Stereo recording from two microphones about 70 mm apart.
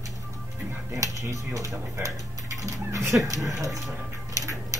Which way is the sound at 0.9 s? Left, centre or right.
Right.